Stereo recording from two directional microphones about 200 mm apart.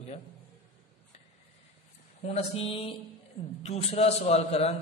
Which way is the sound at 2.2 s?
30° left (ahead or behind).